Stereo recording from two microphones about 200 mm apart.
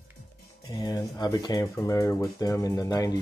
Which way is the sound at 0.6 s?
20° left (ahead or behind).